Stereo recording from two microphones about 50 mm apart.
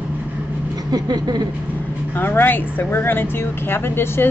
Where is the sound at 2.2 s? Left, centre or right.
Left.